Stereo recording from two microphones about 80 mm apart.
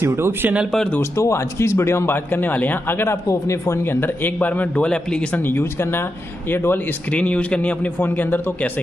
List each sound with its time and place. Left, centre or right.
0.0 s speech: right
1.1 s speech: left; by 5.4 s centre
5.4 s speech: left
7.1 s speech: centre